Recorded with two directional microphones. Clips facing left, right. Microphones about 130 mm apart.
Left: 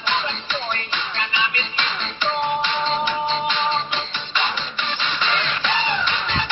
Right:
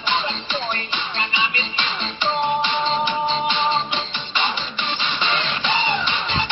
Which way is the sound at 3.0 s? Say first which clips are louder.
Right 1 dB; 25° right (ahead or behind).